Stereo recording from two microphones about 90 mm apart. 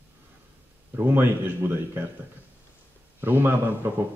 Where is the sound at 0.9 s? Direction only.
25° right (ahead or behind).